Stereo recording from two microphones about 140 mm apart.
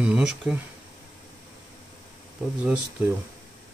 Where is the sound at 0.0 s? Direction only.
5° right (ahead or behind).